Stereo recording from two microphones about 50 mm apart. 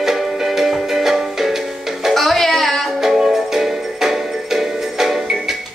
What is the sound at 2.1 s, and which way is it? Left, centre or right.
Music, centre.